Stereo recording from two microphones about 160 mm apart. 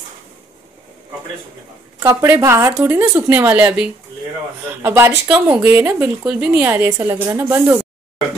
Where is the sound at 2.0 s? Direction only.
20° right (ahead or behind).